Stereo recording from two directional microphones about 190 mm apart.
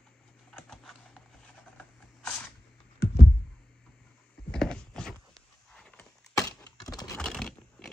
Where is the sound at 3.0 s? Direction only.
60° left (ahead or behind).